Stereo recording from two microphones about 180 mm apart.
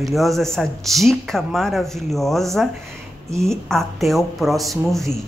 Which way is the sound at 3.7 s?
Centre (ahead or behind).